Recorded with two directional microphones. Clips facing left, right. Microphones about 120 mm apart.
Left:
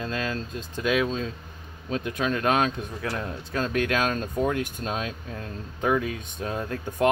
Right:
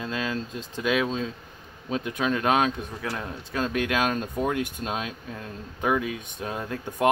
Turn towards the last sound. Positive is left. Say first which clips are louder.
# left 1 dB
turn(degrees=-15)  # may be behind; listen again after turning